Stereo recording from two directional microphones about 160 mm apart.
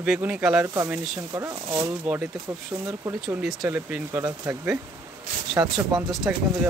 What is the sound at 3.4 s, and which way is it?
Speech, centre (ahead or behind).